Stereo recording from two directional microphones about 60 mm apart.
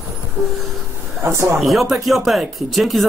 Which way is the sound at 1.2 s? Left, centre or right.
Right.